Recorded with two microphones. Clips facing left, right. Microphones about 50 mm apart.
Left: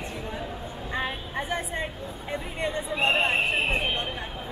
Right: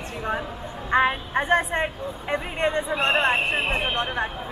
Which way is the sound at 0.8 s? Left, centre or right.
Right.